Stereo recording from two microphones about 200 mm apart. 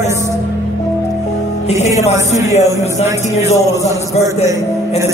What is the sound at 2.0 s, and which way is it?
Speech, 35° left (ahead or behind).